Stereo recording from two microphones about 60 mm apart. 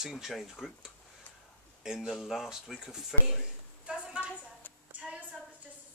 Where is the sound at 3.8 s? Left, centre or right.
Centre.